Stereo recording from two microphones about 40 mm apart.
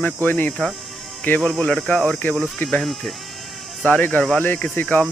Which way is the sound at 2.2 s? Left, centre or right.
Left.